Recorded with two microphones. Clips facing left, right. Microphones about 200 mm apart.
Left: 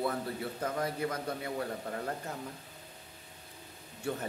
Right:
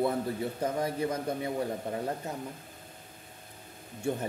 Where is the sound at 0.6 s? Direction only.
20° right (ahead or behind).